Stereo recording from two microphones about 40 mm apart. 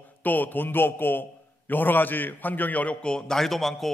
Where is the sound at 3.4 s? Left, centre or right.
Centre.